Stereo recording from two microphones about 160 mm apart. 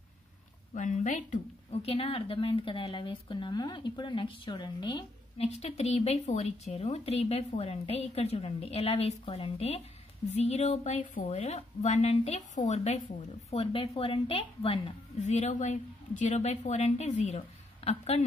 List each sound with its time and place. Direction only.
0.7 s a woman's voice: 50° left (ahead or behind); by 5.0 s 25° left (ahead or behind)
5.4 s a woman's voice: 40° left (ahead or behind)